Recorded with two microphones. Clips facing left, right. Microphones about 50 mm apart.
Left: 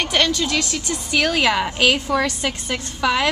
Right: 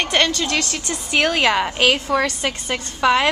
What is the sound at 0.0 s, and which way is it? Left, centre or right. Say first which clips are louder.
Speech: right 1 dB; centre.